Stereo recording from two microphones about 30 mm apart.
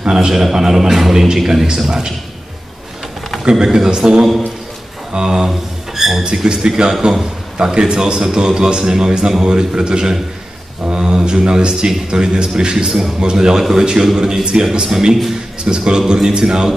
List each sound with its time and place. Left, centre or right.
0.0 s a man's voice: right
0.3 s a man's voice: centre
3.5 s a man's voice: centre
5.5 s a sound: centre
6.2 s a man's voice: right
7.8 s a man's voice: right
13.2 s a man's voice: right
13.6 s a man's voice: centre